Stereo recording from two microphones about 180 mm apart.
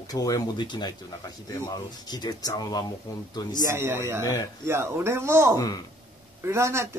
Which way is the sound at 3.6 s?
15° right (ahead or behind).